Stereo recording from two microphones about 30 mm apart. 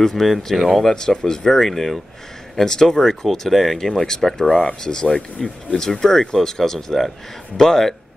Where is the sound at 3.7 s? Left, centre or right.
Centre.